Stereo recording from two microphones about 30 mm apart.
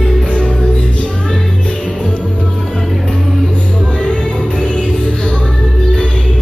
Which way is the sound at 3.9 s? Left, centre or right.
Left.